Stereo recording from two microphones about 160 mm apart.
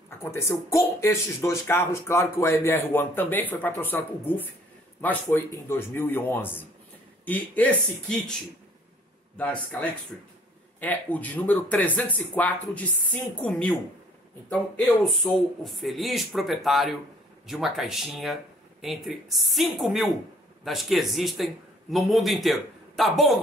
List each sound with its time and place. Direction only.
0.2 s speech: 15° left (ahead or behind)
9.4 s speech: 10° left (ahead or behind)
15.0 s speech: centre (ahead or behind)